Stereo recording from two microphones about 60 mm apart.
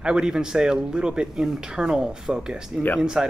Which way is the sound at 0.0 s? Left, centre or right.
Centre.